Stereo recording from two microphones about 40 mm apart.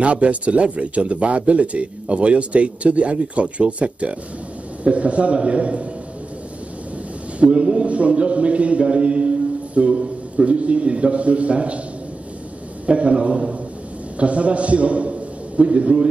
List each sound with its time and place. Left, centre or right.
0.0 s speech: right
7.3 s a man's voice: right
12.8 s a man's voice: right